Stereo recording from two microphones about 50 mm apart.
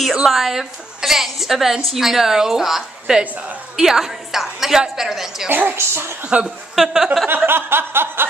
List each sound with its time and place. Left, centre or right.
0.1 s a woman's voice: centre
5.5 s a woman's voice: right
5.8 s a woman's voice: right
6.4 s a woman's voice: centre
7.2 s chuckle: right